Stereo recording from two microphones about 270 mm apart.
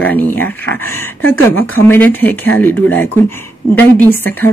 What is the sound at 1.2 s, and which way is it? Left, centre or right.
Speech, left.